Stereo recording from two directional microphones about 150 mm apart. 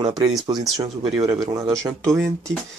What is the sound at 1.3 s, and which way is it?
Speech, 20° right (ahead or behind).